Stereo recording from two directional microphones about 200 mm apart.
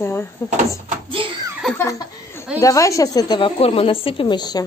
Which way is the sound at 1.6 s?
10° left (ahead or behind).